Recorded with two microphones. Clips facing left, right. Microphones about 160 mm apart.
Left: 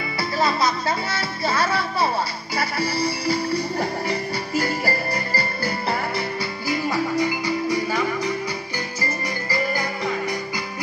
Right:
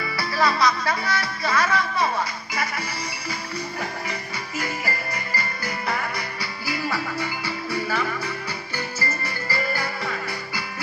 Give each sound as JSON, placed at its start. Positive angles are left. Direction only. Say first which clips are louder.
{"t": 0.2, "sound": "music", "louder": "even", "side_deg": 25}
{"t": 6.7, "sound": "music", "louder": "left 5 dB", "side_deg": 15}
{"t": 9.5, "sound": "music", "louder": "left 2 dB", "side_deg": 15}